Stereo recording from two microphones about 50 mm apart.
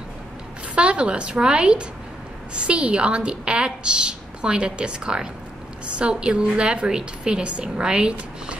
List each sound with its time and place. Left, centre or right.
0.7 s a woman's voice: right